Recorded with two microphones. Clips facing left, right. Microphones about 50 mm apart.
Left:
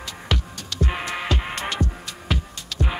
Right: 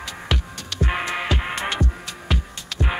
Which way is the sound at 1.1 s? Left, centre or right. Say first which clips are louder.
Right 2 dB; centre.